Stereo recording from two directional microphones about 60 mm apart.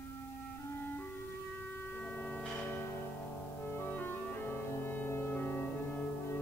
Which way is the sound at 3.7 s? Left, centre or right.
Left.